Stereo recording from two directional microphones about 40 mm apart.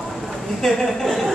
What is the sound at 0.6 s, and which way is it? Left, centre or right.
Speech, centre.